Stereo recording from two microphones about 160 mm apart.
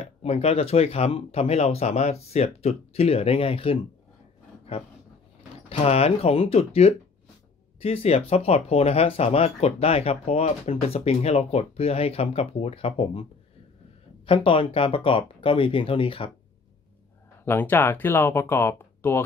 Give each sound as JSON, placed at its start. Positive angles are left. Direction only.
{"t": 0.0, "sound": "speech", "side_deg": 40}
{"t": 14.2, "sound": "speech", "side_deg": 35}
{"t": 17.5, "sound": "speech", "side_deg": 10}